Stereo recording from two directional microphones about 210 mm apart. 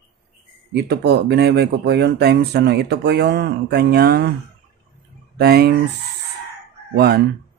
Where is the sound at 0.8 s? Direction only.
50° right (ahead or behind).